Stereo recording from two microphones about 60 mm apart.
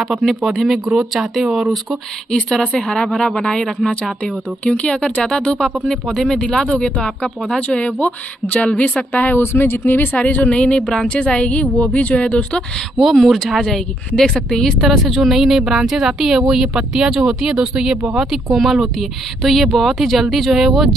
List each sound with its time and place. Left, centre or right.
0.0 s speech: centre
1.9 s a woman's voice: centre; by 9.4 s left
9.4 s speech: left
9.8 s a woman's voice: left
12.7 s speech: centre